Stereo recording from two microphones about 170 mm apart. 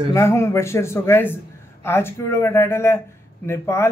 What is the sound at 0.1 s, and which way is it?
Speech, 15° left (ahead or behind).